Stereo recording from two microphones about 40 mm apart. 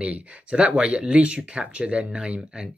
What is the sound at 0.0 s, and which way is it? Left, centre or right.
Speech, right.